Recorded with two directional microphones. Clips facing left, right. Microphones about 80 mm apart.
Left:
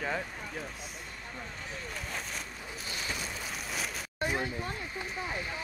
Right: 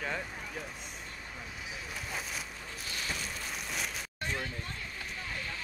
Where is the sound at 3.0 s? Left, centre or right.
Centre.